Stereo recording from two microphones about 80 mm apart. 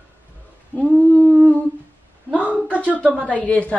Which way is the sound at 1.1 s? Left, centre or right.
Centre.